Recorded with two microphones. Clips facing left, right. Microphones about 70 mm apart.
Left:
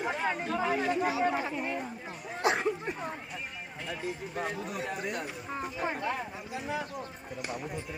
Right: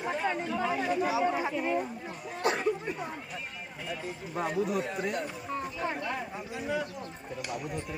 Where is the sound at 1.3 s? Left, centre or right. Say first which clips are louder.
Right 2 dB; centre.